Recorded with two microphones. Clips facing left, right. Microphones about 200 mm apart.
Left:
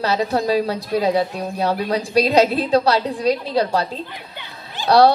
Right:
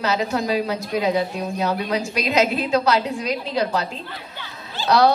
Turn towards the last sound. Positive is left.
turn(degrees=35)  # may be behind; listen again after turning